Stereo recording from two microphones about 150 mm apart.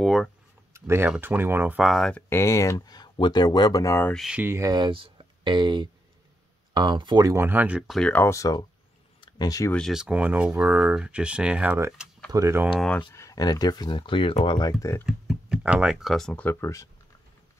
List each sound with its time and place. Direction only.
0.0 s speech: centre (ahead or behind)
0.7 s speech: 15° right (ahead or behind)
1.9 s speech: 5° left (ahead or behind)
2.2 s speech: 20° left (ahead or behind)
4.1 s speech: 5° right (ahead or behind)
4.5 s speech: 20° right (ahead or behind); by 8.6 s 25° left (ahead or behind)
9.2 s a sound: 25° left (ahead or behind)
9.7 s speech: 5° left (ahead or behind); by 12.6 s 20° right (ahead or behind)
12.7 s speech: 5° left (ahead or behind)
13.1 s speech: 20° left (ahead or behind)
14.7 s speech: 20° left (ahead or behind)
15.0 s speech: 5° right (ahead or behind); by 16.9 s 20° left (ahead or behind)